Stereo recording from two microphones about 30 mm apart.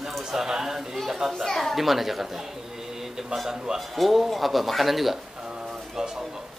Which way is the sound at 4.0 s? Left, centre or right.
Centre.